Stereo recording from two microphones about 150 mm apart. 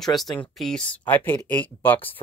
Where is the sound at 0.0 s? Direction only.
Centre (ahead or behind).